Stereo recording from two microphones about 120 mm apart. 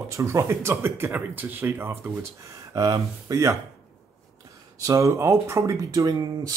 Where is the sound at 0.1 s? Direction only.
25° right (ahead or behind).